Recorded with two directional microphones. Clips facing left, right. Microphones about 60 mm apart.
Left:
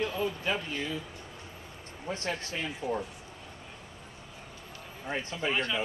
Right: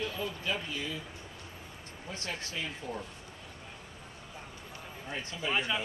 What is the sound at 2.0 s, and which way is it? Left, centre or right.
Speech, left.